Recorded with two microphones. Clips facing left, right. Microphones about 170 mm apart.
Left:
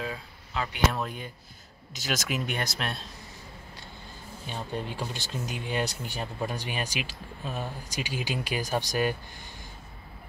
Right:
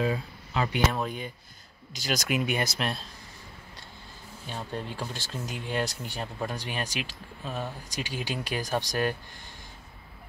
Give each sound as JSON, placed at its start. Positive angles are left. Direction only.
{"t": 0.0, "sound": "speech", "side_deg": -15}
{"t": 0.9, "sound": "speech", "side_deg": 0}
{"t": 4.5, "sound": "speech", "side_deg": 0}